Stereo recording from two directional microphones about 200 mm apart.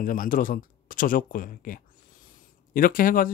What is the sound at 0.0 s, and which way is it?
Speech, 45° left (ahead or behind).